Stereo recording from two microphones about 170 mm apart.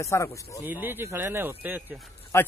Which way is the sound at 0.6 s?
10° right (ahead or behind).